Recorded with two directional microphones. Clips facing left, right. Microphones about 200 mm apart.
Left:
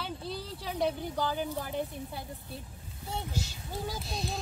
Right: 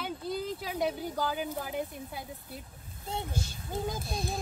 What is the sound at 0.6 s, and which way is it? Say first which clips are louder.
Speech: left 5 dB; 5° right (ahead or behind).